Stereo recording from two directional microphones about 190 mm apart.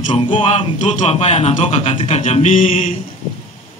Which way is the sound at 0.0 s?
30° left (ahead or behind).